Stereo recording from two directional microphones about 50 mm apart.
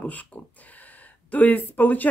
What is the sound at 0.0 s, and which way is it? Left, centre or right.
Speech, left.